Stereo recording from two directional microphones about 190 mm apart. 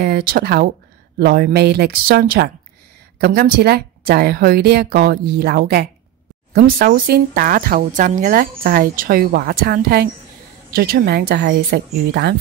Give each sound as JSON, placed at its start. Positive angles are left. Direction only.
{"t": 0.0, "sound": "a woman's voice", "side_deg": -50}